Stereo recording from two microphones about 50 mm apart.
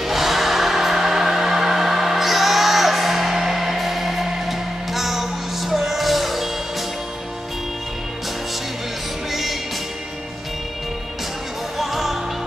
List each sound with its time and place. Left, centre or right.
0.0 s music: centre
9.3 s music: centre
11.8 s music: centre